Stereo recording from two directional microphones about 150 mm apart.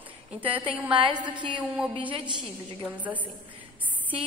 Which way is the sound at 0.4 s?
35° right (ahead or behind).